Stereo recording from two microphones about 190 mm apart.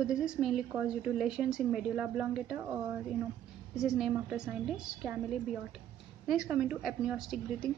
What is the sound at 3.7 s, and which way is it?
Speech, 5° right (ahead or behind).